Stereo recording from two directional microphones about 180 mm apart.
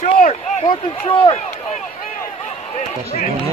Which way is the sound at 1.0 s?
30° left (ahead or behind).